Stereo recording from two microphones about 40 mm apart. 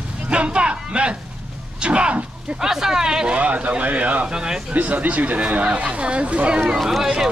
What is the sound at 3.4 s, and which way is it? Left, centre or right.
Speech, right.